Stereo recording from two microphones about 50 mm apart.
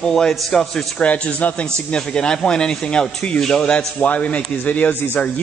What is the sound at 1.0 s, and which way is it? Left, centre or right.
Speech, left.